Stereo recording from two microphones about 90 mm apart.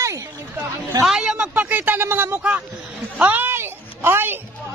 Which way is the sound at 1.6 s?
20° right (ahead or behind).